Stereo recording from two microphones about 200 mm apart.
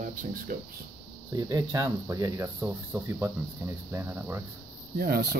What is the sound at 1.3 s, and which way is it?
Speech, 15° right (ahead or behind).